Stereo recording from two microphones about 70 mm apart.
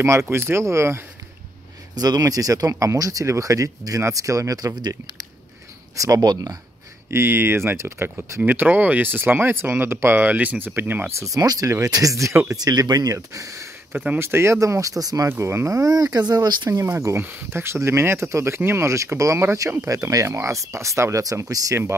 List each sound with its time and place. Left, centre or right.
0.0 s speech: right
2.0 s speech: right
2.7 s speech: right
5.9 s speech: right
6.2 s speech: right
7.1 s speech: right
8.4 s speech: right
11.1 s speech: right
12.5 s speech: right
13.9 s speech: right
14.2 s speech: right
15.2 s speech: right
16.7 s speech: right